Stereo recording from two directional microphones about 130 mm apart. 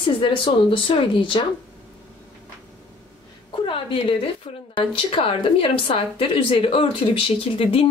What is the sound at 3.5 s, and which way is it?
A woman's voice, 45° left (ahead or behind).